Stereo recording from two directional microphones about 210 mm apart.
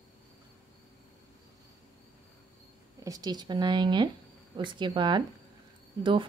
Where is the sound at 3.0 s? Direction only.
20° right (ahead or behind).